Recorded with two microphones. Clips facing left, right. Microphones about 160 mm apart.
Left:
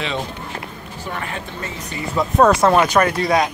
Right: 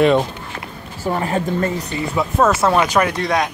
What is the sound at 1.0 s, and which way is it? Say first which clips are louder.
Speech: right 9 dB; 35° right (ahead or behind).